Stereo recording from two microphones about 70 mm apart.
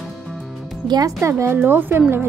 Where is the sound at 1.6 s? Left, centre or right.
Right.